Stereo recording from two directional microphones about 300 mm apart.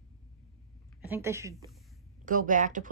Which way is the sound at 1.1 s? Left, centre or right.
Centre.